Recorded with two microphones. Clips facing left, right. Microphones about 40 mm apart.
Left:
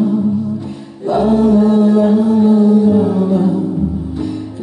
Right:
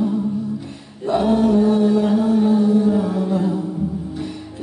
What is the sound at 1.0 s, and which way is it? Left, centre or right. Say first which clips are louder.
Music: left 4 dB; left.